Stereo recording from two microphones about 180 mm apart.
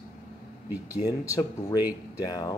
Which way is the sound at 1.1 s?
20° left (ahead or behind).